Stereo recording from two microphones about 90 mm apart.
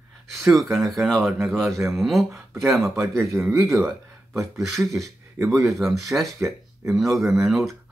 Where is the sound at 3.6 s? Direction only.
Centre (ahead or behind).